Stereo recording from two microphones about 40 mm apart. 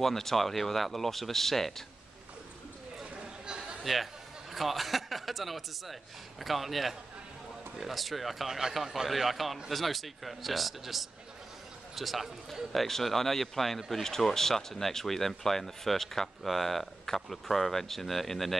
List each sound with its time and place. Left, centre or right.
0.0 s speech: centre
3.0 s a sound: centre
3.8 s a man's voice: centre
8.5 s speech: centre